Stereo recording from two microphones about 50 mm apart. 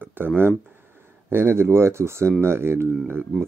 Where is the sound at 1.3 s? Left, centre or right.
Right.